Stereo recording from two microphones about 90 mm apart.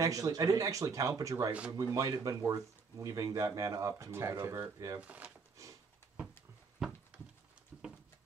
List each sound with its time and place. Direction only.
0.0 s speech: 40° right (ahead or behind)
1.5 s speech: 15° right (ahead or behind)
1.8 s speech: 40° right (ahead or behind)
4.1 s speech: 30° right (ahead or behind)
5.0 s speech: 15° right (ahead or behind)
6.8 s a sound: 5° right (ahead or behind)
7.7 s patter: 10° right (ahead or behind)